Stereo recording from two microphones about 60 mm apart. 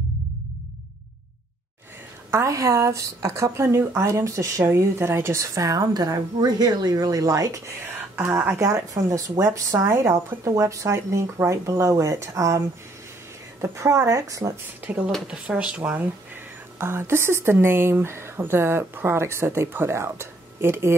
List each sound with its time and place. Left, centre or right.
2.3 s speech: right
4.6 s speech: right
8.3 s speech: right
8.5 s speech: right
10.1 s speech: right
15.2 s speech: centre
16.7 s speech: right